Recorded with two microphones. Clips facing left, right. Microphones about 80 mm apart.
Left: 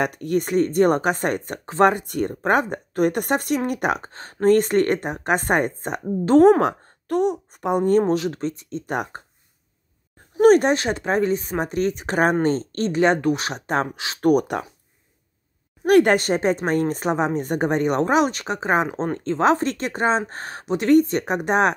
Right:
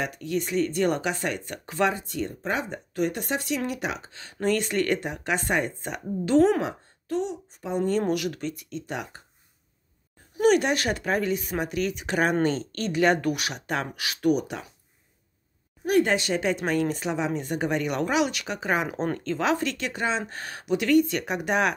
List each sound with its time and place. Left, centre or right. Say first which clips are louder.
0.0 s speech: left 6 dB; left
6.6 s a woman's voice: left 9 dB; left
8.1 s a woman's voice: left 5 dB; left
8.8 s speech: left 9 dB; left
10.3 s speech: left 6 dB; left
10.8 s a woman's voice: left 4 dB; left
14.2 s speech: left 6 dB; left
15.9 s a woman's voice: left 7 dB; left